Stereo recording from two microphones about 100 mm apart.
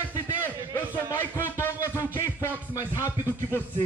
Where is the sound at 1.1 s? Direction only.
25° left (ahead or behind).